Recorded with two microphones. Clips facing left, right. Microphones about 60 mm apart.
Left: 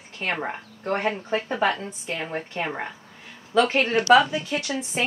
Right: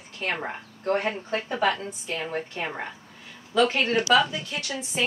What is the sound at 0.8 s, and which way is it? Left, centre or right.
A woman's voice, left.